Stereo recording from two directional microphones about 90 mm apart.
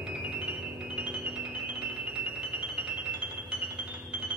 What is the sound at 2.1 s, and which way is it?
Music, 15° right (ahead or behind).